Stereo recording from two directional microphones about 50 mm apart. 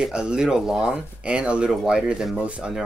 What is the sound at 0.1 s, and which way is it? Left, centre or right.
Speech, centre.